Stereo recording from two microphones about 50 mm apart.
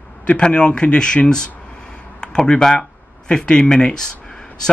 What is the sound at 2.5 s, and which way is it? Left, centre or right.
Speech, centre.